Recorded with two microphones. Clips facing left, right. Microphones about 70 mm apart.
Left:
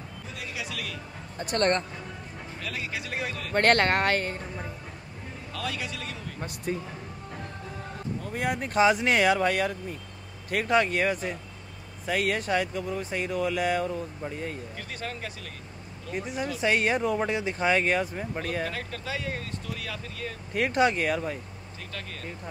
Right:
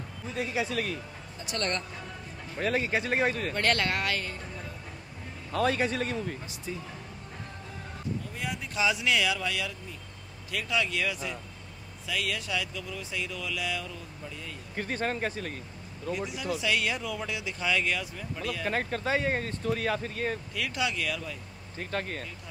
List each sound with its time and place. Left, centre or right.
0.4 s speech: right
1.4 s speech: left
2.6 s speech: right
3.5 s speech: left
5.5 s speech: right
6.4 s speech: left
8.3 s speech: left
14.8 s speech: right
16.1 s speech: left
18.7 s speech: right
20.5 s speech: left
21.9 s speech: right